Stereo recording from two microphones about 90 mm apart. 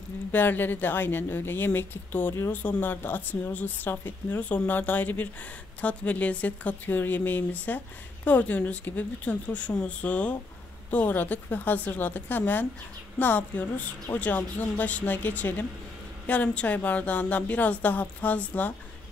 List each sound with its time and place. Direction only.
0.3 s a woman's voice: 20° left (ahead or behind)